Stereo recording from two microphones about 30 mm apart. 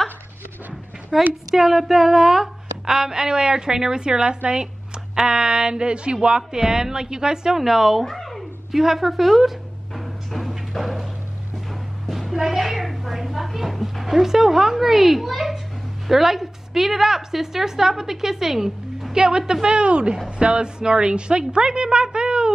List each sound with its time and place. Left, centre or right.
1.1 s a woman's voice: centre; by 6.6 s right
6.6 s a woman's voice: centre
7.5 s a woman's voice: centre
8.0 s a sound: centre
8.7 s a sound: centre
10.7 s music: centre
12.1 s a sound: centre
14.1 s a woman's voice: centre
19.1 s a woman's voice: right
19.8 s a woman's voice: right